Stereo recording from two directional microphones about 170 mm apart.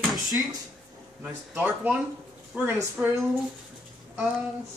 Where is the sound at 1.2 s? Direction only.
10° right (ahead or behind).